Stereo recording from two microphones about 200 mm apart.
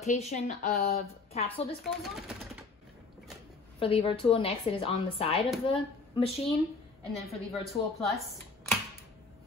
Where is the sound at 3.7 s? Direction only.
30° left (ahead or behind).